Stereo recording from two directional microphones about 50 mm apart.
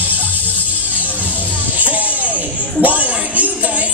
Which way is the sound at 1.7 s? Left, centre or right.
Right.